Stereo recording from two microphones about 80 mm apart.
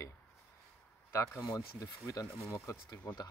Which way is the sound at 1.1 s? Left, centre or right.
Left.